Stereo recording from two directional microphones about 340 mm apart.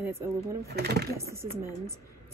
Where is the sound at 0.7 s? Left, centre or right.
Right.